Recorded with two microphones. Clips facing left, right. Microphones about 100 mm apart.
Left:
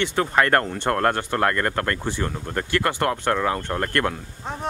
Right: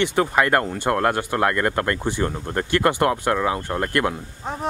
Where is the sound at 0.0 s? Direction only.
15° right (ahead or behind).